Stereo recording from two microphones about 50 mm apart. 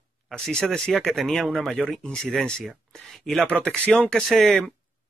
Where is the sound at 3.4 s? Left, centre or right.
Left.